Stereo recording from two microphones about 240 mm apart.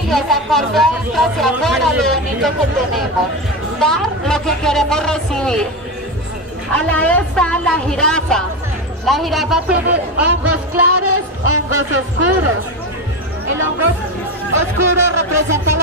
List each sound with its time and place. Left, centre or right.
0.1 s speech: centre
6.7 s speech: centre
10.8 s speech: right
14.5 s speech: right